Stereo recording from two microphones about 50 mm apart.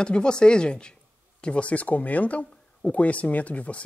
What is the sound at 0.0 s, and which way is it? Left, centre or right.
Speech, centre.